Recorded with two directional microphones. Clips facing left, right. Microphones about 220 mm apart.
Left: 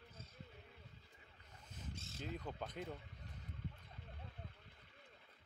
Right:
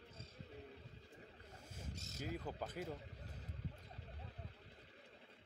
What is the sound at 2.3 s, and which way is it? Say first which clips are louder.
Speech: right 1 dB; 5° right (ahead or behind).